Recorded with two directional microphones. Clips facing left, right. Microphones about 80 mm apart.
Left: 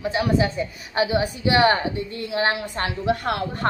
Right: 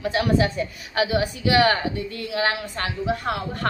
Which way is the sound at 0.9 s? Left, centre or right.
Left.